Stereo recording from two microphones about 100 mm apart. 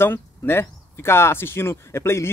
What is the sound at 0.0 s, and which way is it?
A man's voice, 25° left (ahead or behind).